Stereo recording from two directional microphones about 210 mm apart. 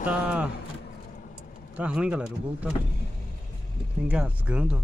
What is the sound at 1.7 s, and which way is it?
Speech, 5° right (ahead or behind).